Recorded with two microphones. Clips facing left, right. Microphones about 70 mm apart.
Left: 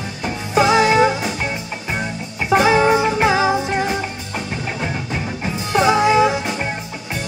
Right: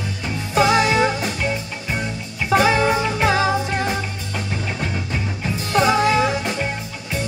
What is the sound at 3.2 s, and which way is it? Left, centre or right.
Music, centre.